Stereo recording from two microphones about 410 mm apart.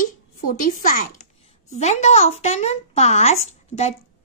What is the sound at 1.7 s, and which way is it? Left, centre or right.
A woman's voice, centre.